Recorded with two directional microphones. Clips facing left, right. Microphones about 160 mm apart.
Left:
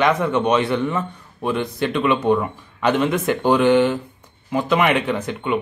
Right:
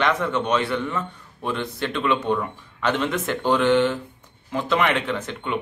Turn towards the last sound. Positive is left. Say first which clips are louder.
# left 5 dB
turn(degrees=10)  # may be behind; listen again after turning